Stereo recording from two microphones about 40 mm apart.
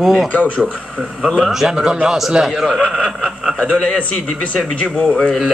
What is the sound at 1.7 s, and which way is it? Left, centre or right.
Speech, centre.